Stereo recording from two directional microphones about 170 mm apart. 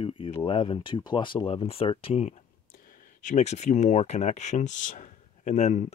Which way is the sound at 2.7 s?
55° left (ahead or behind).